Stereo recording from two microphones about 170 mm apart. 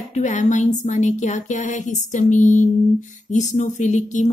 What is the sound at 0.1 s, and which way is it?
A woman's voice, 45° left (ahead or behind).